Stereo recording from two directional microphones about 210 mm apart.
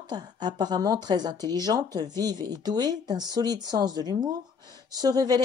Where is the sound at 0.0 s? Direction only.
20° right (ahead or behind).